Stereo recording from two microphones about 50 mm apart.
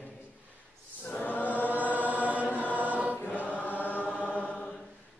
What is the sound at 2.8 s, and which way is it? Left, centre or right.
Choir, right.